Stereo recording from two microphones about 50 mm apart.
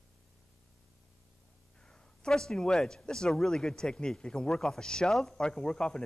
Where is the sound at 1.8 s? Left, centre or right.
Centre.